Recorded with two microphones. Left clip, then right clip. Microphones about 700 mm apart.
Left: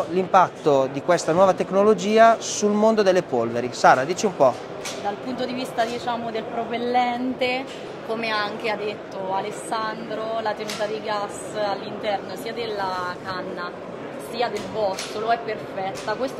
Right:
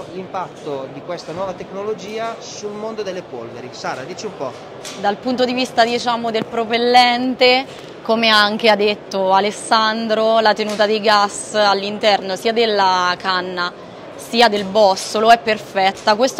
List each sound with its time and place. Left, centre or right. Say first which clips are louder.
0.3 s speech: left 9 dB; left
5.0 s a woman's voice: right 11 dB; right
8.1 s a woman's voice: right 12 dB; right